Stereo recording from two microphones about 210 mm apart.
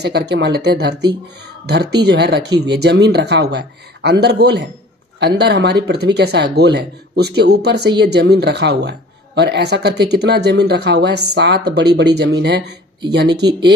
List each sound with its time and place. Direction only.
0.0 s speech: 50° right (ahead or behind)